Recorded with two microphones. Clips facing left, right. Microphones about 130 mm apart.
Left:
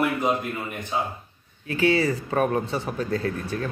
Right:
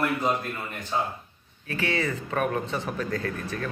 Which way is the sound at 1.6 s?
30° left (ahead or behind).